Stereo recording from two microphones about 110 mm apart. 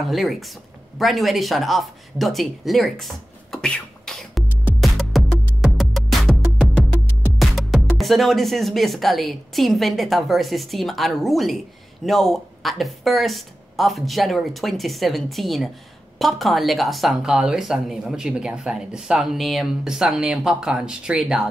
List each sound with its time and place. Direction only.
0.0 s speech: centre (ahead or behind)
3.5 s beatboxing: 5° left (ahead or behind)
4.7 s music: centre (ahead or behind)
7.3 s speech: centre (ahead or behind)